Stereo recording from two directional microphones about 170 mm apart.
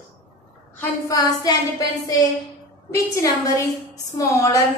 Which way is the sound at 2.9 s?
20° left (ahead or behind).